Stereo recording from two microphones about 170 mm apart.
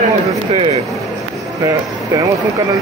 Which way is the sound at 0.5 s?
35° right (ahead or behind).